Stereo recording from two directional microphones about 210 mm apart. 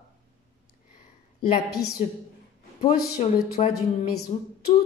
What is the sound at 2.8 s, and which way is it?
Speech, 30° left (ahead or behind).